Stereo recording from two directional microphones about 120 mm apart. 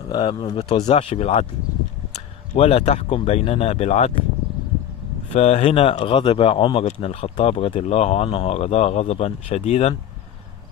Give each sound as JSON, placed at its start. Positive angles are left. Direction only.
{"t": 0.1, "sound": "speech", "side_deg": 40}
{"t": 0.8, "sound": "speech", "side_deg": 55}
{"t": 2.5, "sound": "speech", "side_deg": 55}
{"t": 5.3, "sound": "speech", "side_deg": 60}
{"t": 6.8, "sound": "speech", "side_deg": 60}
{"t": 7.7, "sound": "speech", "side_deg": 65}